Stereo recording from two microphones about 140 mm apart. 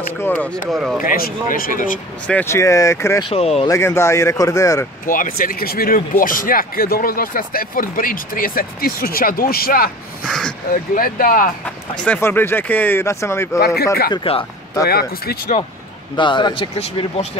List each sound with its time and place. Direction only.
0.2 s speech: 10° left (ahead or behind)
0.7 s speech: 5° right (ahead or behind)
1.0 s speech: 85° left
2.2 s speech: 15° left (ahead or behind)
3.3 s speech: 45° left (ahead or behind)
3.6 s speech: 20° left (ahead or behind)
5.0 s speech: 75° left (ahead or behind)
10.2 s speech: 5° left (ahead or behind)
10.7 s speech: 90° left
11.6 s speech: 10° left (ahead or behind)
14.1 s a man's voice: 40° left (ahead or behind)
14.9 s speech: 90° left
16.2 s a man's voice: 35° left (ahead or behind)